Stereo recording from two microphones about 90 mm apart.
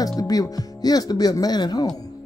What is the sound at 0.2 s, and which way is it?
Speech, 45° left (ahead or behind).